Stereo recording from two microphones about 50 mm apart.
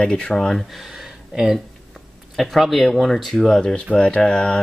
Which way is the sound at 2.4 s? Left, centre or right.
Centre.